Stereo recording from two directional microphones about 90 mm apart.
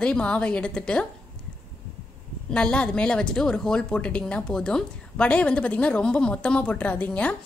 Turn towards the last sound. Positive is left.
turn(degrees=15)  # may be behind; listen again after turning